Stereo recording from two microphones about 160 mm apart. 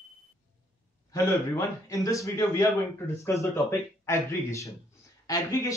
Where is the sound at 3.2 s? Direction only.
20° left (ahead or behind).